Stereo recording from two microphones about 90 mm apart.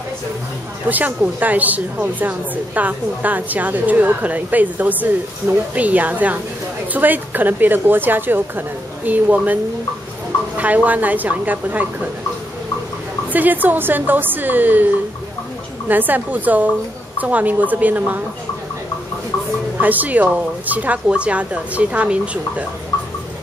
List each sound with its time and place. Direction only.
0.8 s a woman's voice: 20° right (ahead or behind)
10.6 s a woman's voice: 15° right (ahead or behind)
13.3 s a woman's voice: 20° right (ahead or behind)
15.9 s a woman's voice: 20° right (ahead or behind)
19.8 s speech: 20° right (ahead or behind)